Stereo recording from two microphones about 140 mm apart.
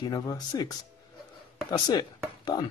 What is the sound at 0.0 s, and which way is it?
Speech, 30° left (ahead or behind).